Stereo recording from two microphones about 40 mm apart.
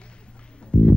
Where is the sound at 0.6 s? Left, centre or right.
Left.